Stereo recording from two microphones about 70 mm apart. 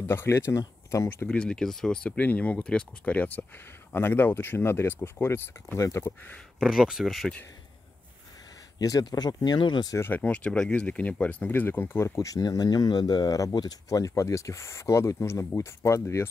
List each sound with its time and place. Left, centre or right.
0.0 s speech: left
1.3 s speech: centre; by 5.9 s left
6.6 s speech: centre
8.7 s speech: left
9.9 s speech: left
12.2 s speech: left